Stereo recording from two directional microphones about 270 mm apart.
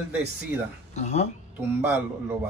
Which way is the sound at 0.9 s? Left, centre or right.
Left.